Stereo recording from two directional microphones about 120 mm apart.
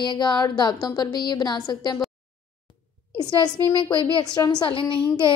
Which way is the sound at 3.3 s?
40° left (ahead or behind).